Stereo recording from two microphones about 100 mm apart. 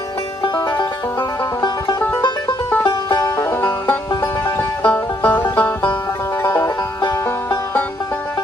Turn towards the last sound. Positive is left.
turn(degrees=25)  # may be behind; listen again after turning